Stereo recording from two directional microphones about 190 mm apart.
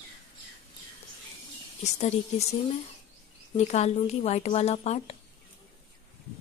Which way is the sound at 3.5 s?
35° left (ahead or behind).